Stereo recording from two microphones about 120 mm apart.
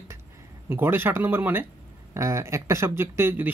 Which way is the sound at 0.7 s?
20° right (ahead or behind).